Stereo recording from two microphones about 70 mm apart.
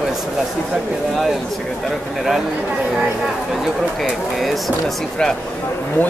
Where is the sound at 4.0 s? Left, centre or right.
Centre.